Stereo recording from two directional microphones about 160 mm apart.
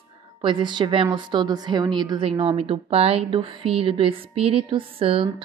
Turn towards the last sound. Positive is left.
turn(degrees=-35)  # may be behind; listen again after turning